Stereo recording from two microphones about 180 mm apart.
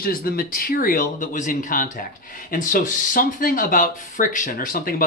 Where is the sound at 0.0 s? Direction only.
55° left (ahead or behind).